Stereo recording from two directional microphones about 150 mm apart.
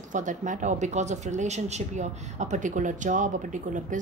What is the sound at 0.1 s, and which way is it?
A woman's voice, 55° right (ahead or behind).